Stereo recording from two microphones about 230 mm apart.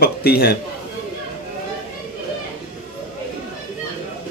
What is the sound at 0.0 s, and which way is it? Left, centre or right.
Speech, left.